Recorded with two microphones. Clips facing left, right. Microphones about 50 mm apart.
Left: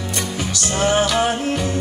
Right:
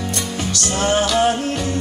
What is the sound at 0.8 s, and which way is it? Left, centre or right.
Music, left.